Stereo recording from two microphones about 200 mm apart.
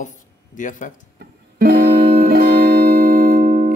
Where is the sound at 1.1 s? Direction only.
45° right (ahead or behind).